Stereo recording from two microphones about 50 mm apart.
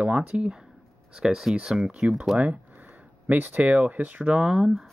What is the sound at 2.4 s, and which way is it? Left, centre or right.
Speech, right.